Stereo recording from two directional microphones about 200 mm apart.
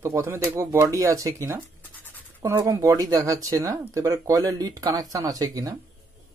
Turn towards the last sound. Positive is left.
turn(degrees=-20)  # may be behind; listen again after turning